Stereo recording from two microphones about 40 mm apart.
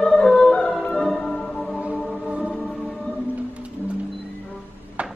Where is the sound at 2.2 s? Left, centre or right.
Right.